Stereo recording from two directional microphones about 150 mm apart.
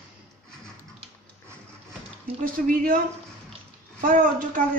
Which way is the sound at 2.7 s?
70° right (ahead or behind).